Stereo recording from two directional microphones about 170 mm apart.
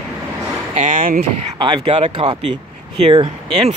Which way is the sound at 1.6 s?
30° right (ahead or behind).